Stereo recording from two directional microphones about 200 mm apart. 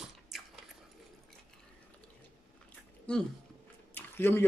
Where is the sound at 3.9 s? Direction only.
10° left (ahead or behind).